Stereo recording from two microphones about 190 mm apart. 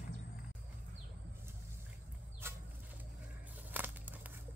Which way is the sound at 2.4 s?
10° right (ahead or behind).